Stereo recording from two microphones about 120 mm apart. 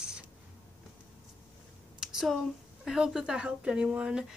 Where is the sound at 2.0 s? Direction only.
5° right (ahead or behind).